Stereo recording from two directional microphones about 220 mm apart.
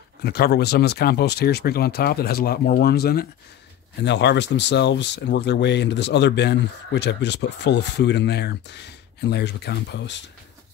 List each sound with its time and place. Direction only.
0.2 s speech: 45° left (ahead or behind)